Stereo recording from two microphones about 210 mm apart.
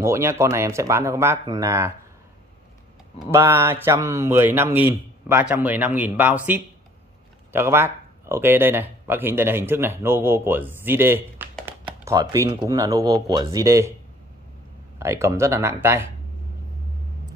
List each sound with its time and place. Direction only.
0.0 s speech: 15° right (ahead or behind)
3.3 s speech: 10° right (ahead or behind)
15.0 s speech: 15° right (ahead or behind)